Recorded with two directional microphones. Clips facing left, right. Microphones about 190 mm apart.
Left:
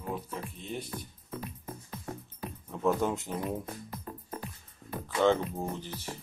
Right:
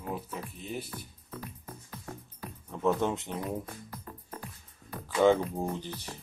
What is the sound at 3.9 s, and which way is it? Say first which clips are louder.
Music: left 3 dB; 25° left (ahead or behind).